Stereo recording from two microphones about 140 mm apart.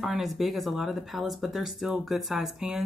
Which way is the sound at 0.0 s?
Centre (ahead or behind).